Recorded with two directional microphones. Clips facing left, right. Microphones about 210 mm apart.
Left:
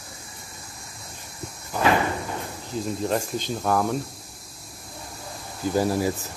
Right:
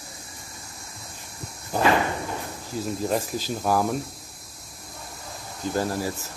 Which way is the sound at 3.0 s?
5° right (ahead or behind).